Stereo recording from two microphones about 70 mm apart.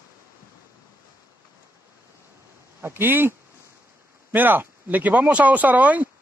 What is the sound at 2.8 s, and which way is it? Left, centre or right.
Speech, right.